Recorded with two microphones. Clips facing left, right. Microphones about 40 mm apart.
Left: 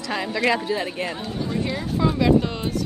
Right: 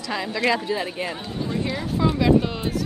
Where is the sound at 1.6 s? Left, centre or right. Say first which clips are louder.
Even; centre.